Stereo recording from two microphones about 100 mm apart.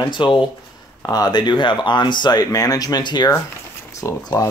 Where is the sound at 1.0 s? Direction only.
40° left (ahead or behind).